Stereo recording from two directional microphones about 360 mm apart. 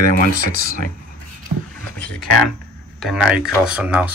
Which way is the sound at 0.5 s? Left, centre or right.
Left.